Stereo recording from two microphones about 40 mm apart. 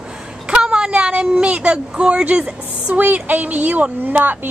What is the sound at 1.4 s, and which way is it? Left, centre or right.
Speech, right.